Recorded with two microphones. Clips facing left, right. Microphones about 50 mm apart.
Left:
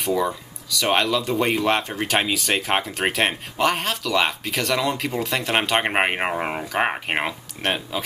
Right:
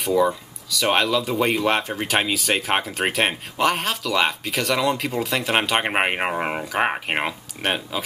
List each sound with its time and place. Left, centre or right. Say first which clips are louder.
0.0 s speech: right 3 dB; centre